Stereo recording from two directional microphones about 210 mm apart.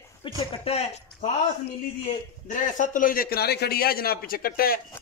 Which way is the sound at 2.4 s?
40° left (ahead or behind).